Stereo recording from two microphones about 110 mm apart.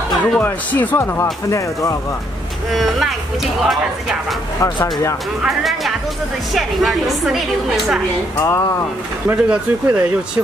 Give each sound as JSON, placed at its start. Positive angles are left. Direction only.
{"t": 0.2, "sound": "speech", "side_deg": 15}
{"t": 2.7, "sound": "a woman's voice", "side_deg": 0}
{"t": 5.4, "sound": "a woman's voice", "side_deg": 0}
{"t": 8.4, "sound": "speech", "side_deg": 25}
{"t": 9.3, "sound": "speech", "side_deg": -15}